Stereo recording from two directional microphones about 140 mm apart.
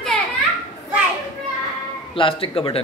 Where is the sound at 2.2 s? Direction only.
40° left (ahead or behind).